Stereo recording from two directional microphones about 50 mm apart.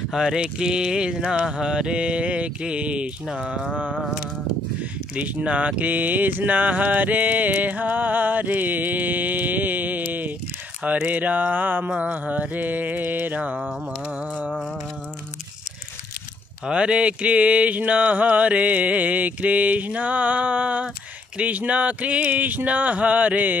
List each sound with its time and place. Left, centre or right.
0.1 s speech: centre
0.4 s mantra: centre
3.7 s humming: left
5.1 s speech: right
16.6 s mantra: right
21.4 s speech: right